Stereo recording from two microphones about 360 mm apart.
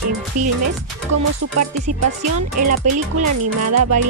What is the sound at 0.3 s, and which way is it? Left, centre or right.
Music, right.